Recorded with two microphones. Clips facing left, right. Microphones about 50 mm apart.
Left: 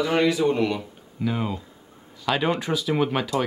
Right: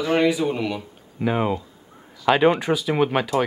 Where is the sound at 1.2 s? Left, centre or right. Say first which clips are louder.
Right 5 dB; right.